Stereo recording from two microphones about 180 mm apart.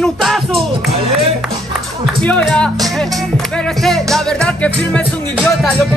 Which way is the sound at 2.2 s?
5° left (ahead or behind).